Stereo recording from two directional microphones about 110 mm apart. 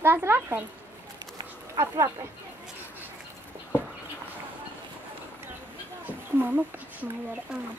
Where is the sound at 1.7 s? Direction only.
25° right (ahead or behind).